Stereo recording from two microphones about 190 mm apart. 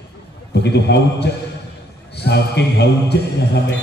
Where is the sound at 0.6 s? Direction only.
60° left (ahead or behind).